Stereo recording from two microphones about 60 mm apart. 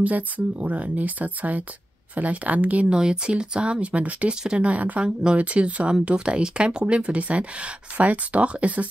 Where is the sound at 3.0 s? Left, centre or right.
Centre.